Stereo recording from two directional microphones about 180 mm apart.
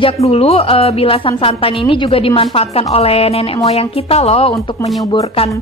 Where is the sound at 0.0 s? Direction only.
35° left (ahead or behind).